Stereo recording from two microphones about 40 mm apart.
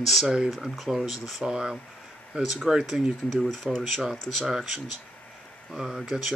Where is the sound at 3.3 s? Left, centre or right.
Centre.